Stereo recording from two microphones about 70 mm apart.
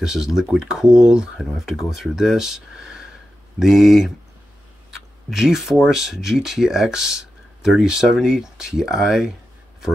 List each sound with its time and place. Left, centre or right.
0.0 s speech: centre